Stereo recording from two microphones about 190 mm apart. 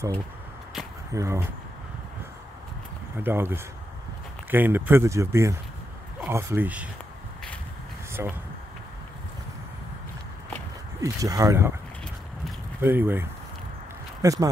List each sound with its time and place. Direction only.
1.1 s speech: 15° right (ahead or behind)
3.2 s speech: 10° right (ahead or behind)
8.1 s speech: 15° right (ahead or behind)
11.0 s speech: 15° right (ahead or behind)
12.8 s speech: 10° right (ahead or behind)